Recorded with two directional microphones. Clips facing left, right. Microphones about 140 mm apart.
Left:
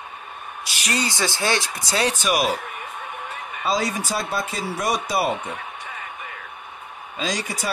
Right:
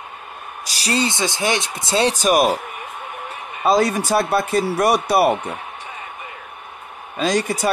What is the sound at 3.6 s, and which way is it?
Speech, 55° right (ahead or behind).